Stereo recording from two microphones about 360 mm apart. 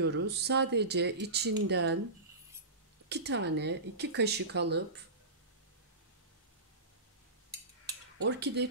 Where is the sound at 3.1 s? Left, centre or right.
Right.